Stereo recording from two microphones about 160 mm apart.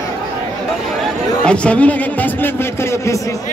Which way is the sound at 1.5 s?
5° left (ahead or behind).